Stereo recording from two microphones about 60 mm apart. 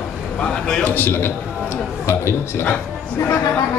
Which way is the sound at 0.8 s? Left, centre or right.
Left.